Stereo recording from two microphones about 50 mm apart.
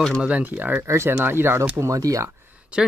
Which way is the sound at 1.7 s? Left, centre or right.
Right.